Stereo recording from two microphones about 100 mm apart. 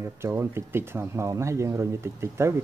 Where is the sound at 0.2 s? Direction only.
25° right (ahead or behind).